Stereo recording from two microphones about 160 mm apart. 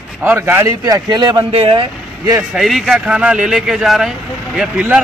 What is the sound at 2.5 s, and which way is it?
Speech, centre (ahead or behind).